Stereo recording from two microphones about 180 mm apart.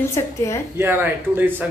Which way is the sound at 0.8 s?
10° right (ahead or behind).